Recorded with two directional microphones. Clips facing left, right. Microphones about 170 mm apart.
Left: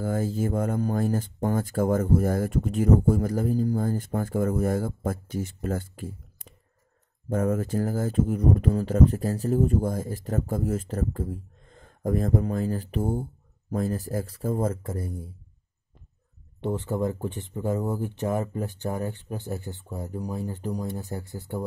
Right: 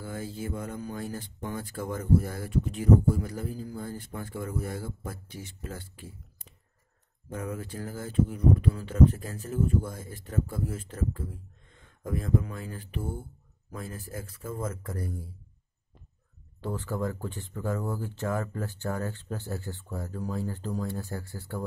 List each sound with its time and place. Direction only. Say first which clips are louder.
0.0 s speech: left 9 dB; 45° left (ahead or behind); by 15.3 s 20° left (ahead or behind)
16.6 s speech: left 5 dB; 20° left (ahead or behind)